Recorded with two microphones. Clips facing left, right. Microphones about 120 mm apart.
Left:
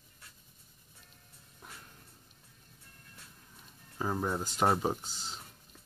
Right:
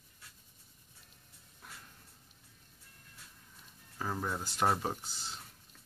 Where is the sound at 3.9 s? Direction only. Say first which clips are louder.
Left 4 dB; 15° left (ahead or behind).